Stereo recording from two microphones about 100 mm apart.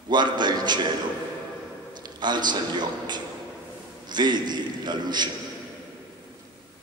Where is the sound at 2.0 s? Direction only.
45° right (ahead or behind).